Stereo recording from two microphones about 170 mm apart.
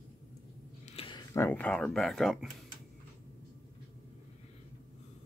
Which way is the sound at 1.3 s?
10° left (ahead or behind).